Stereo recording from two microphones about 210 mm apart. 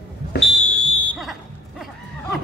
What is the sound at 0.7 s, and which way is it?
Fire alarm, centre (ahead or behind).